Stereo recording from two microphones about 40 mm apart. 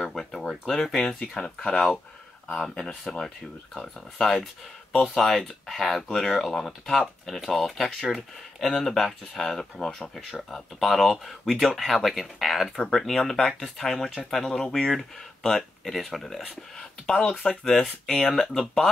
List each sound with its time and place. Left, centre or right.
0.0 s a sound: centre
0.7 s speech: centre
1.2 s speech: centre
10.5 s speech: centre
12.7 s speech: centre
16.7 s speech: centre